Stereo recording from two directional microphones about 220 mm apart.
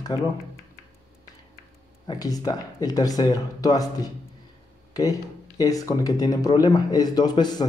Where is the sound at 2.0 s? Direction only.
15° left (ahead or behind).